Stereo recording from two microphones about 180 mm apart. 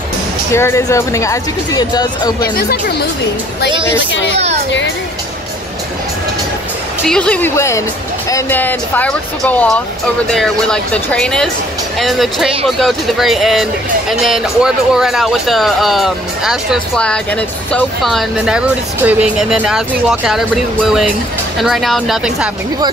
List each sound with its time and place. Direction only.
0.5 s speech: 15° left (ahead or behind)
2.5 s speech: 60° left (ahead or behind)
7.1 s speech: 5° left (ahead or behind)